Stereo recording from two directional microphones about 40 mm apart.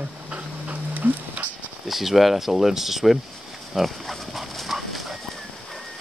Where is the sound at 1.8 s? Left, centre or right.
Centre.